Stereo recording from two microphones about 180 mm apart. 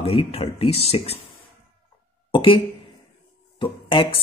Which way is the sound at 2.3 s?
30° left (ahead or behind).